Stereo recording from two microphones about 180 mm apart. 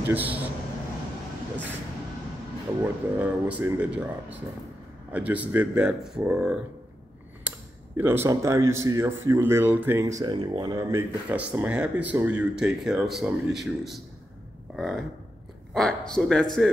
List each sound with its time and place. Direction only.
0.1 s speech: 10° right (ahead or behind)
2.8 s speech: 10° right (ahead or behind)
5.1 s speech: 10° right (ahead or behind)
7.5 s computer keyboard: 10° right (ahead or behind)
8.0 s speech: 15° right (ahead or behind); by 16.7 s 5° left (ahead or behind)